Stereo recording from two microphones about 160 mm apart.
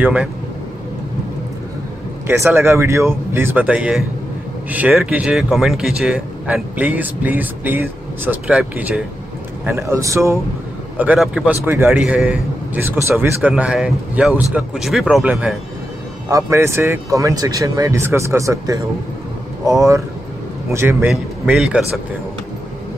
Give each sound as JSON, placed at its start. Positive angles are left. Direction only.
{"t": 0.0, "sound": "speech", "side_deg": -10}
{"t": 2.2, "sound": "speech", "side_deg": -15}
{"t": 11.0, "sound": "speech", "side_deg": -5}
{"t": 16.3, "sound": "speech", "side_deg": -20}
{"t": 21.1, "sound": "speech", "side_deg": -5}